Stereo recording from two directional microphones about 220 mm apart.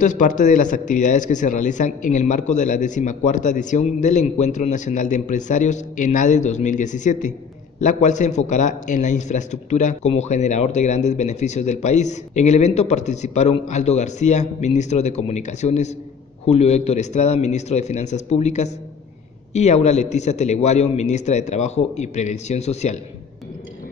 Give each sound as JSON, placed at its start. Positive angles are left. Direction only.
{"t": 0.0, "sound": "a man's voice", "side_deg": 35}